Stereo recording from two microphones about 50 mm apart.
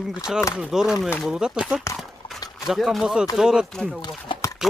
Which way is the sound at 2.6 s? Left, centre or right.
Centre.